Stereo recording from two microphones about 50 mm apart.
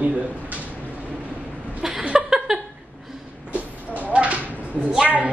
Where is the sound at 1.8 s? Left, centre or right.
Centre.